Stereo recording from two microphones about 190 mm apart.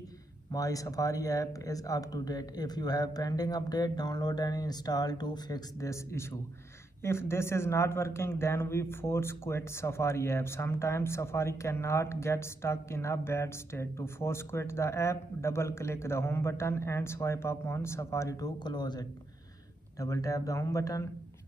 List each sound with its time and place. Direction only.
0.5 s a man's voice: 20° left (ahead or behind)